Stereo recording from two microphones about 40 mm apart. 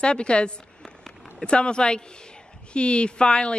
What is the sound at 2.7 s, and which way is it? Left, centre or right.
Speech, left.